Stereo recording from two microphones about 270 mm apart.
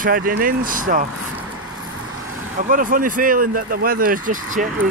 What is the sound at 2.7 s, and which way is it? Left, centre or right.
Speech, right.